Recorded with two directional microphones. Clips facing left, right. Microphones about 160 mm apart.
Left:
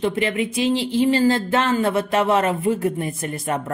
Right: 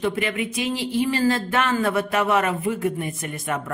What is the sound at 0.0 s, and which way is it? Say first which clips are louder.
Speech: left 3 dB; 30° left (ahead or behind).